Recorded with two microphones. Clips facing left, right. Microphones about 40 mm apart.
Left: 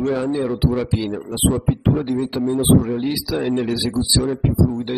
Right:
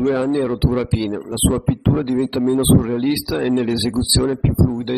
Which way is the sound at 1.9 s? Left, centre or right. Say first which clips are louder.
Right 5 dB; right.